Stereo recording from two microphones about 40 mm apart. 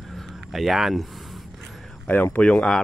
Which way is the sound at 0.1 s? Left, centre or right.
Centre.